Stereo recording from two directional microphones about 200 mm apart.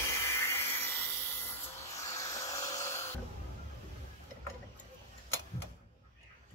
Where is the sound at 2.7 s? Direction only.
15° left (ahead or behind).